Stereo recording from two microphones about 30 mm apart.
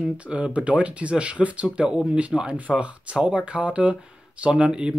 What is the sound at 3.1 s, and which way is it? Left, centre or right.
Speech, right.